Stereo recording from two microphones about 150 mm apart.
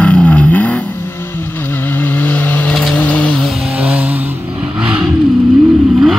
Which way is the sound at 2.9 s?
10° left (ahead or behind).